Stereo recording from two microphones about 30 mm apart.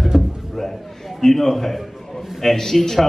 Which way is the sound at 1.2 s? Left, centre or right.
Centre.